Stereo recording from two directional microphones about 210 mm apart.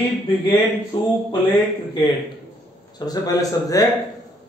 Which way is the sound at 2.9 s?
20° left (ahead or behind).